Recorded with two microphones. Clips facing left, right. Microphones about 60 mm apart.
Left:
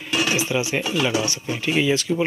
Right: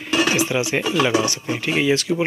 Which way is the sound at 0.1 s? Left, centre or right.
Right.